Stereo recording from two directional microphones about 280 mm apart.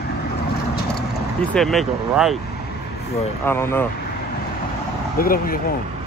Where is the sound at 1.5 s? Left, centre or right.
Centre.